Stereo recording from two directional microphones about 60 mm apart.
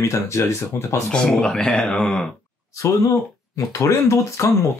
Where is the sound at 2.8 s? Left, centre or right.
Left.